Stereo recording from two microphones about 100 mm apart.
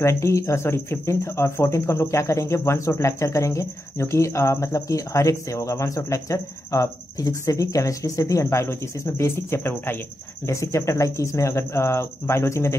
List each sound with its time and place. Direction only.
0.0 s speech: 30° left (ahead or behind)